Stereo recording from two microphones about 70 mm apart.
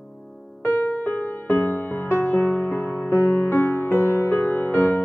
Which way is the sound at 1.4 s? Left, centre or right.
Left.